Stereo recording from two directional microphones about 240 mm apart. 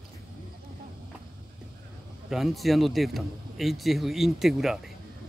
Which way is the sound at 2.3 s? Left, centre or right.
Centre.